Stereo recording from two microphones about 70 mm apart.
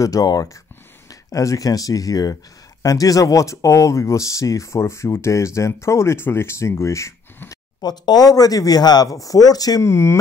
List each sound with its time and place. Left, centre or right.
0.0 s speech: left
7.8 s speech: left
9.1 s speech: left
9.8 s speech: left